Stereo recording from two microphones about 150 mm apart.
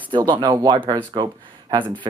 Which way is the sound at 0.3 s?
30° right (ahead or behind).